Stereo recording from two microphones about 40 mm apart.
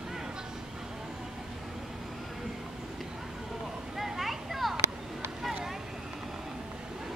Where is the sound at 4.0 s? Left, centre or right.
Centre.